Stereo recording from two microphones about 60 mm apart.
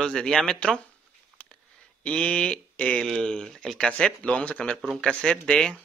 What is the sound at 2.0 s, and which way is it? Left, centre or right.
Speech, centre.